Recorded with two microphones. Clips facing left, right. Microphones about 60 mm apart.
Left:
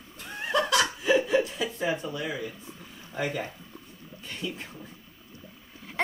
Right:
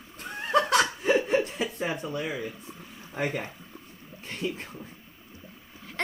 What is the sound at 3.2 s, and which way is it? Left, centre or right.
Speech, right.